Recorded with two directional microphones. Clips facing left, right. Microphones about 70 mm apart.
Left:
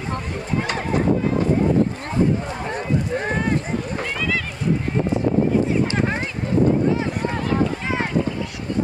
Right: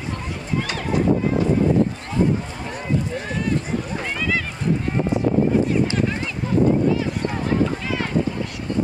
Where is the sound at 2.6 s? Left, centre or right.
Left.